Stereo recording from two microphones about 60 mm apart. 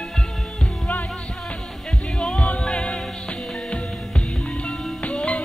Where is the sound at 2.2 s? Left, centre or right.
Centre.